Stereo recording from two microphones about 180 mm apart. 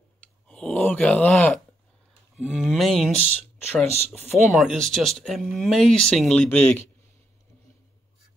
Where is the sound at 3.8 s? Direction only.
35° right (ahead or behind).